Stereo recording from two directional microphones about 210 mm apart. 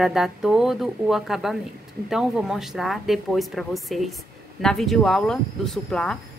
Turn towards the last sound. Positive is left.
turn(degrees=5)  # may be behind; listen again after turning